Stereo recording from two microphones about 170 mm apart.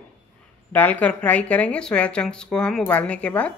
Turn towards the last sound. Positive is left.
turn(degrees=5)  # may be behind; listen again after turning